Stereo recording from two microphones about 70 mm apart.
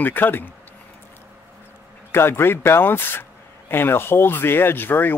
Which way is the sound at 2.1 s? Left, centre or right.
Left.